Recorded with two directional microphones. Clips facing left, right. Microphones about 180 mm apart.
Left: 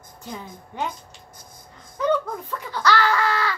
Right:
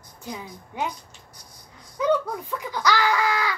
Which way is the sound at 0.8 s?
50° left (ahead or behind).